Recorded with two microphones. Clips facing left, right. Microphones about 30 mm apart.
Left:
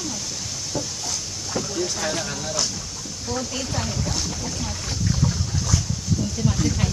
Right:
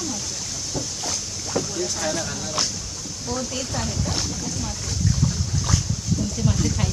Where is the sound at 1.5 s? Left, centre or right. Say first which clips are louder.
Even; centre.